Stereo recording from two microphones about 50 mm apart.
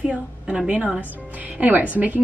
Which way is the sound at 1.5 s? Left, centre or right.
Right.